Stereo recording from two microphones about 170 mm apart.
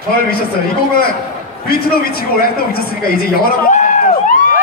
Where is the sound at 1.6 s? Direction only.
60° left (ahead or behind).